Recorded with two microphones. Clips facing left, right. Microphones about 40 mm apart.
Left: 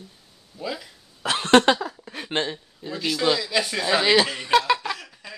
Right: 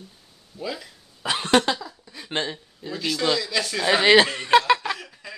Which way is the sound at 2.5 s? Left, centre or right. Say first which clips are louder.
Even; centre.